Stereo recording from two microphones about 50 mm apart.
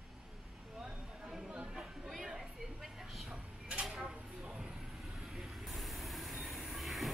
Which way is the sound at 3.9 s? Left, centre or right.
Right.